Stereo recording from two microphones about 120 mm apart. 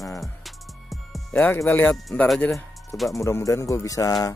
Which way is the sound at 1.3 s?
15° left (ahead or behind).